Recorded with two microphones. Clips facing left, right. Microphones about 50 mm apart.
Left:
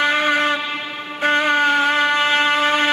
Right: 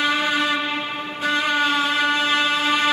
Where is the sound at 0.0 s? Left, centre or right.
Left.